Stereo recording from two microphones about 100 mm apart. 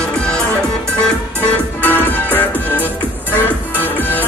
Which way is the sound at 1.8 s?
20° left (ahead or behind).